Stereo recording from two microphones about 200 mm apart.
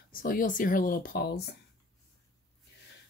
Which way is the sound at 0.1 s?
45° left (ahead or behind).